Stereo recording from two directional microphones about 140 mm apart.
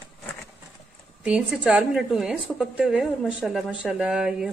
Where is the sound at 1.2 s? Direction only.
5° right (ahead or behind).